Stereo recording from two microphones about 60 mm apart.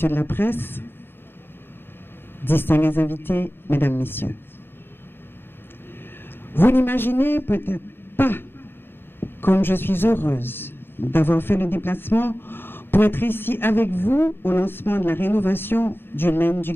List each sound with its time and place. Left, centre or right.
0.0 s a man's voice: left
2.4 s a man's voice: left
6.5 s a man's voice: left